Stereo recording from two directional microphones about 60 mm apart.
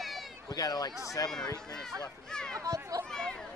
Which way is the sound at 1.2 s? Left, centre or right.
Left.